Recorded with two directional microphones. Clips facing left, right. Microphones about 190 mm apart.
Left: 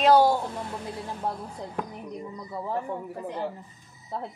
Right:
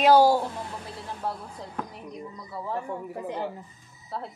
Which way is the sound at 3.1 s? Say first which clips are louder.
Right 1 dB; 20° right (ahead or behind).